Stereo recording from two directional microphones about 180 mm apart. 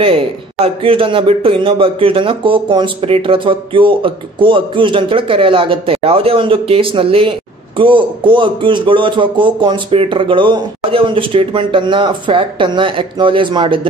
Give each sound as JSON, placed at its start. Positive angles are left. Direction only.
{"t": 0.8, "sound": "speech", "side_deg": -30}